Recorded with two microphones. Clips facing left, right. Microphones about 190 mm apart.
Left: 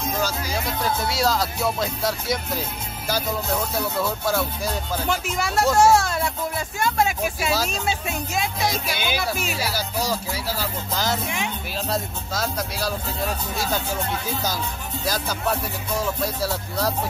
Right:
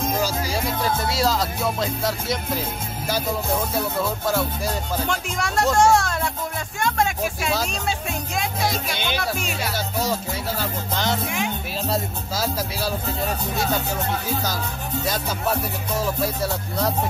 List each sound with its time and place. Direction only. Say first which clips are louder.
1.1 s speech: even; centre (ahead or behind)
4.9 s speech: left 1 dB; 5° left (ahead or behind)
15.0 s speech: left 1 dB; centre (ahead or behind)